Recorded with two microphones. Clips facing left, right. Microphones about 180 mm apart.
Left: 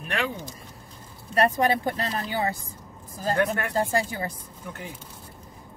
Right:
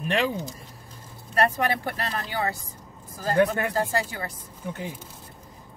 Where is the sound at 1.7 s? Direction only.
20° left (ahead or behind).